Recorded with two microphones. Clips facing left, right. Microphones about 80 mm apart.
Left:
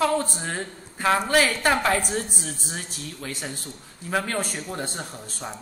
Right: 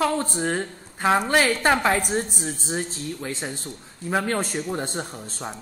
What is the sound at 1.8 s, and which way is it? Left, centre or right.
A man's voice, centre.